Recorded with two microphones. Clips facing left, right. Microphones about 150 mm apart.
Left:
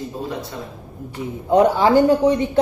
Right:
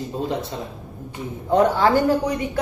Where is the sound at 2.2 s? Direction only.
25° left (ahead or behind).